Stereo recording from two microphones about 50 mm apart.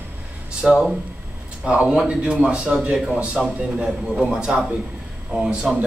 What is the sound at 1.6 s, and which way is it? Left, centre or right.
A man's voice, right.